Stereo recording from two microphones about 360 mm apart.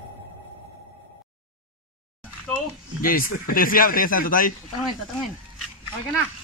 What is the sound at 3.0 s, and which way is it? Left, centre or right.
Speech, left.